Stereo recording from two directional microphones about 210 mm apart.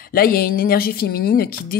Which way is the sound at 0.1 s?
45° left (ahead or behind).